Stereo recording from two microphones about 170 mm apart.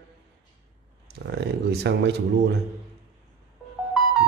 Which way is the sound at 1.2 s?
80° right.